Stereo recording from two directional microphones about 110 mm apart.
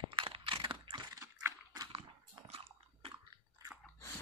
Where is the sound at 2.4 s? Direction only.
65° right (ahead or behind).